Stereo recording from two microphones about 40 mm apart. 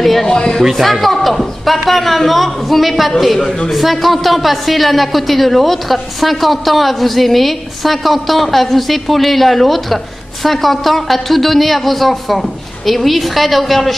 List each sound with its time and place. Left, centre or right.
0.0 s speech: centre
0.3 s speech: left
0.7 s speech: centre